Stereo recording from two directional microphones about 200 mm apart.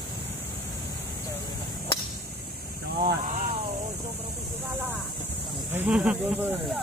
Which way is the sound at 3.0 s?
45° right (ahead or behind).